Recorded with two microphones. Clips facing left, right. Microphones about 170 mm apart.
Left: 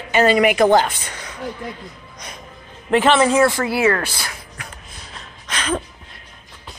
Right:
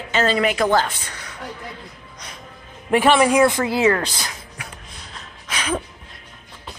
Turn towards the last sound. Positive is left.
turn(degrees=-10)  # may be behind; listen again after turning